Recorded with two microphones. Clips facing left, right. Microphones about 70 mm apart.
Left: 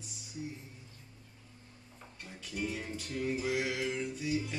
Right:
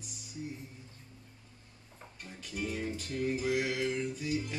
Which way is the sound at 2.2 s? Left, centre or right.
Centre.